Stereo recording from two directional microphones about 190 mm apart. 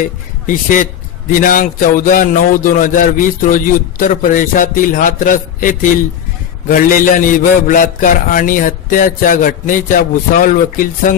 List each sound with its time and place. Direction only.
1.3 s a man's voice: 45° left (ahead or behind)